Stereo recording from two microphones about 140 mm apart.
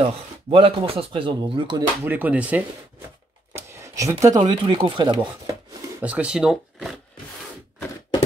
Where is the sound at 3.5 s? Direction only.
20° right (ahead or behind).